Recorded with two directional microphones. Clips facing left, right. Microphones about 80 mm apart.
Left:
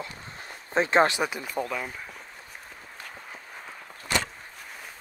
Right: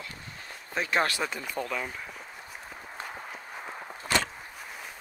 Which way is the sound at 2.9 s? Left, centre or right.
Right.